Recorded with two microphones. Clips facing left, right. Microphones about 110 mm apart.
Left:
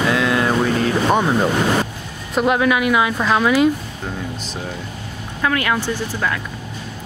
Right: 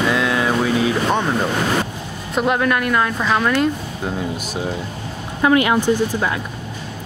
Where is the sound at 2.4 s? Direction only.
Centre (ahead or behind).